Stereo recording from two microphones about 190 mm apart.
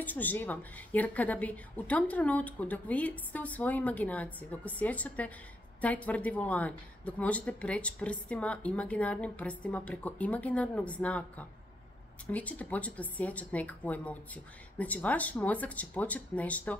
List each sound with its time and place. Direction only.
0.0 s speech: 10° left (ahead or behind)